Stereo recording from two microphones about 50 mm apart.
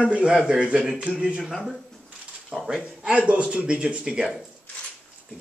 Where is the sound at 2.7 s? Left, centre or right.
Centre.